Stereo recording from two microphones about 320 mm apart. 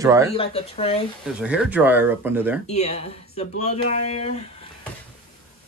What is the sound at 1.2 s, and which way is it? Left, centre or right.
Speech, centre.